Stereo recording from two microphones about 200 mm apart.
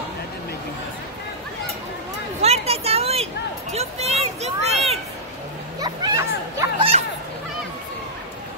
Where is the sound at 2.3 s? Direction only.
30° right (ahead or behind).